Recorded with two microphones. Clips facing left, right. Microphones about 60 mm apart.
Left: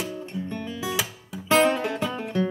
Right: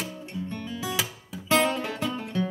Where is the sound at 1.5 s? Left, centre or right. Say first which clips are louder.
Left 4 dB; left.